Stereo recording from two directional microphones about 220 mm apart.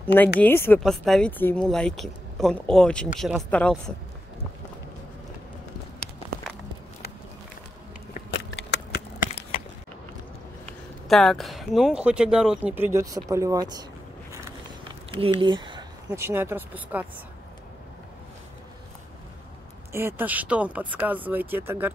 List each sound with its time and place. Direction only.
0.0 s speech: 10° left (ahead or behind)
8.3 s a sound: 55° left (ahead or behind)
11.1 s speech: centre (ahead or behind); by 13.8 s 15° right (ahead or behind)
14.9 s a sound: 25° right (ahead or behind)
16.1 s speech: 10° right (ahead or behind)
19.9 s speech: 10° right (ahead or behind)